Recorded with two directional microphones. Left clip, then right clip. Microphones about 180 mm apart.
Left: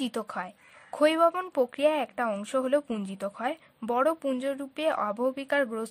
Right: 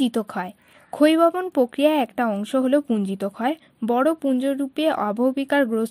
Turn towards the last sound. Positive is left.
turn(degrees=-25)  # may be behind; listen again after turning